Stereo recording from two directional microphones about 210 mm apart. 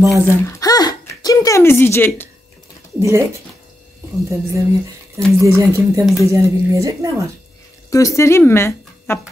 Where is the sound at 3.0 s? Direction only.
15° right (ahead or behind).